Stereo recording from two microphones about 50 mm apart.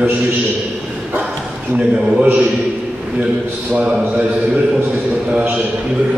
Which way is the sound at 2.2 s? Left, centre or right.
Right.